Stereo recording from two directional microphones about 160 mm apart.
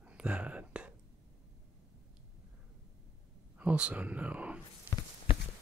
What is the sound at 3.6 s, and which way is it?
Speech, 10° right (ahead or behind).